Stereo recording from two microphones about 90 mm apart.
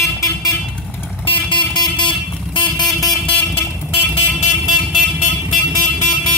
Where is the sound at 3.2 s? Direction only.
20° left (ahead or behind).